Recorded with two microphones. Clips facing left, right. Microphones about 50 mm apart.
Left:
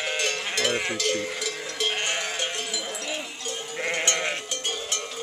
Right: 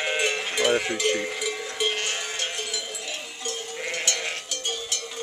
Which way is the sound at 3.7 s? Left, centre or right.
Left.